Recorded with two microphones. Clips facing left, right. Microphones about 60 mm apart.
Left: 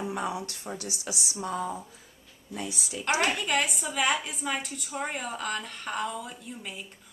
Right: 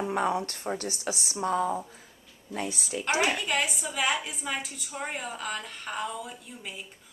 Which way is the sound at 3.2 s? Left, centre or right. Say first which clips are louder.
Even; centre.